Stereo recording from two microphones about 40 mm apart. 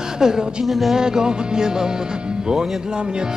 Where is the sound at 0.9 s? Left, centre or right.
Centre.